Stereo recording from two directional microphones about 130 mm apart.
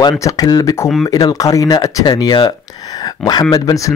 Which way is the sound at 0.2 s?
30° left (ahead or behind).